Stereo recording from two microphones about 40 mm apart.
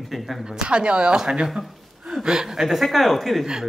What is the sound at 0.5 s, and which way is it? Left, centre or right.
Speech, right.